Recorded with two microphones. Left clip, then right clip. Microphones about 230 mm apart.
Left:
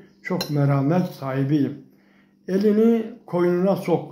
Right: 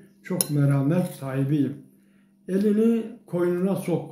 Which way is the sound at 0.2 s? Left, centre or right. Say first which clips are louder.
Left 3 dB; centre.